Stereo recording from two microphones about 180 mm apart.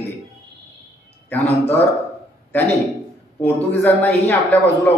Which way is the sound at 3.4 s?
10° left (ahead or behind).